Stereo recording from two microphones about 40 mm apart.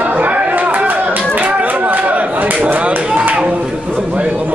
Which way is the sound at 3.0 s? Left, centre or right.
Right.